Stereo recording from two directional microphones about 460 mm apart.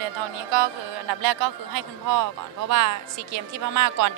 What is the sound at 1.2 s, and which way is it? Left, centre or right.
A man's voice, right.